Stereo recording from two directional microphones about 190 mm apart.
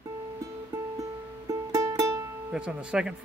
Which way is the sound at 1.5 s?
20° right (ahead or behind).